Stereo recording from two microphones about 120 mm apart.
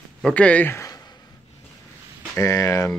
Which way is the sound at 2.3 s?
25° left (ahead or behind).